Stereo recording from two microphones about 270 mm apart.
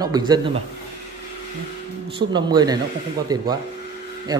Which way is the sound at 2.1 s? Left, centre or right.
Centre.